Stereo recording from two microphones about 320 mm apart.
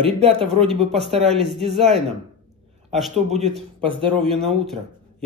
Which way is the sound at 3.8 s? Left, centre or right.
Centre.